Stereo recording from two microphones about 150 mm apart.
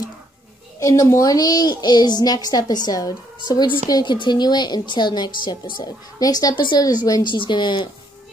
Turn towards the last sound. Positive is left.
turn(degrees=30)  # may be behind; listen again after turning